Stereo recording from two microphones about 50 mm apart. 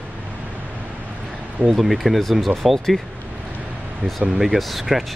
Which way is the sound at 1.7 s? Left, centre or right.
Centre.